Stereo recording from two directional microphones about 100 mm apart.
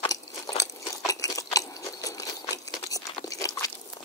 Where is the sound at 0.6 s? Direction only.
35° left (ahead or behind).